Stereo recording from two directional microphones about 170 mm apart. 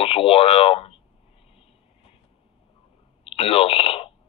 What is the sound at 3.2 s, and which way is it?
Telephone, 35° left (ahead or behind).